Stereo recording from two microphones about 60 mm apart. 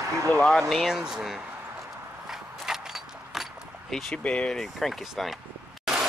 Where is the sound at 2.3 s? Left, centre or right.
Centre.